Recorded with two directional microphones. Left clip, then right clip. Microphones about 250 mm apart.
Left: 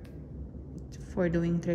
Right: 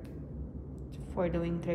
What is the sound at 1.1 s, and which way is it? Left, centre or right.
Speech, left.